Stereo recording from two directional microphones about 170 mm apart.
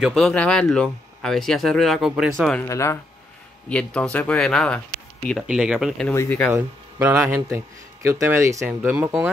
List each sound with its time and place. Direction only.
0.0 s speech: centre (ahead or behind)
2.6 s speech: 15° left (ahead or behind)
3.6 s speech: 5° left (ahead or behind)
6.0 s speech: 10° left (ahead or behind)
6.5 s speech: 10° right (ahead or behind)